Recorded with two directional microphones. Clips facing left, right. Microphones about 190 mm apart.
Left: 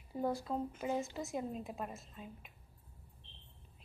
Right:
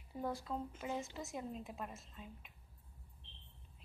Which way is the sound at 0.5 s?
35° left (ahead or behind).